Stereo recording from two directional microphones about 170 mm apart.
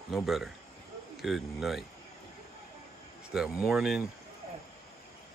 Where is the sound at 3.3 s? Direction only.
5° right (ahead or behind).